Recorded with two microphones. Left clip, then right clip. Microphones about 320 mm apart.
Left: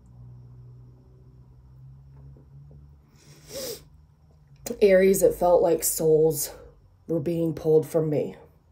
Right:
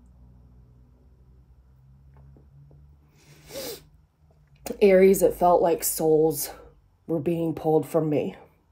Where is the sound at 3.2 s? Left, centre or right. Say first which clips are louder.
Left 1 dB; centre.